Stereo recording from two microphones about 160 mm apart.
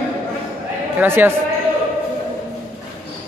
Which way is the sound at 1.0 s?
15° right (ahead or behind).